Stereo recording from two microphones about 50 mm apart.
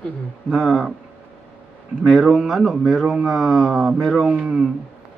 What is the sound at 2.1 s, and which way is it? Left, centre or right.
Speech, centre.